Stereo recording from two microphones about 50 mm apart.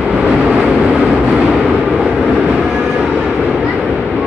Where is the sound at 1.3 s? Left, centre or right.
Centre.